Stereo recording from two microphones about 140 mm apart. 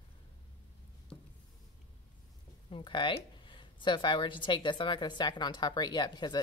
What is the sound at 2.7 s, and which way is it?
A woman's voice, 35° left (ahead or behind).